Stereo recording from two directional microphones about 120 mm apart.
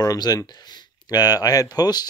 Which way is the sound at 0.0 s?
30° left (ahead or behind).